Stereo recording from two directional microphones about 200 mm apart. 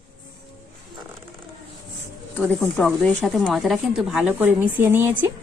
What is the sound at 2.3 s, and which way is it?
Speech, 5° left (ahead or behind).